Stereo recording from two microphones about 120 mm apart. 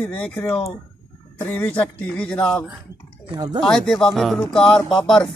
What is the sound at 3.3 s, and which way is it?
Speech, 35° right (ahead or behind).